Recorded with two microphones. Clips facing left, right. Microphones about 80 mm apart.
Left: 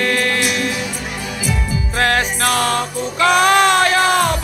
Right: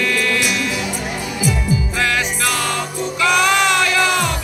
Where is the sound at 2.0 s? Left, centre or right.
Left.